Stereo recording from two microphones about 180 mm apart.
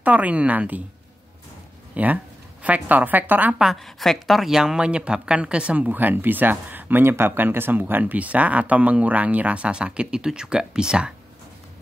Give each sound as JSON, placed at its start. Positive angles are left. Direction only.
{"t": 0.0, "sound": "a woman's voice", "side_deg": -10}
{"t": 2.0, "sound": "a woman's voice", "side_deg": -10}